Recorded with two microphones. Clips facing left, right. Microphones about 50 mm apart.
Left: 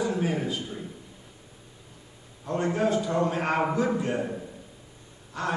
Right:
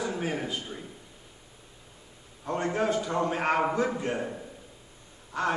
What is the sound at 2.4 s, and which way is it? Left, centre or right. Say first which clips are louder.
A man's voice: left 2 dB; right.